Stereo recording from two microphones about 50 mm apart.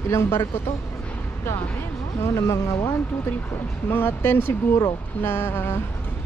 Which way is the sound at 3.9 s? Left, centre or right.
Left.